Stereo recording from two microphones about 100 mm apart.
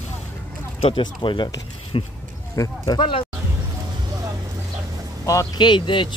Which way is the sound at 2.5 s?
40° left (ahead or behind).